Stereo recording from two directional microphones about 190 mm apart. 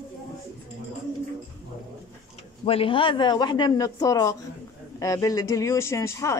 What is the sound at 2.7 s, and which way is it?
A woman's voice, 30° left (ahead or behind).